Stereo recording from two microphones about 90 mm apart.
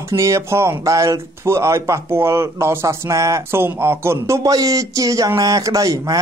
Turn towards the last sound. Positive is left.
turn(degrees=-40)  # may be behind; listen again after turning